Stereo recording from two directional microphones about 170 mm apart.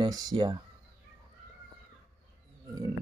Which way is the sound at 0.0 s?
25° right (ahead or behind).